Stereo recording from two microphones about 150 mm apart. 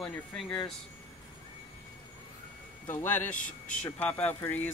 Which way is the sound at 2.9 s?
15° left (ahead or behind).